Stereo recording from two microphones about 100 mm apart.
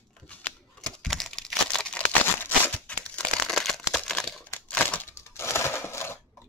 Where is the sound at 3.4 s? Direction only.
5° left (ahead or behind).